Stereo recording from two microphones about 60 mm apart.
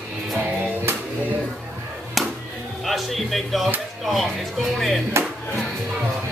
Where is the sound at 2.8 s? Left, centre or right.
Centre.